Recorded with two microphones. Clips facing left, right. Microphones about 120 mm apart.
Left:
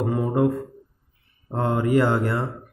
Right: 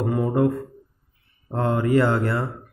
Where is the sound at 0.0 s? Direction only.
20° left (ahead or behind).